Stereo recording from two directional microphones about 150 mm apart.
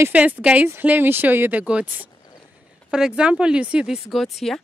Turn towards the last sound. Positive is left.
turn(degrees=0)  # may be behind; listen again after turning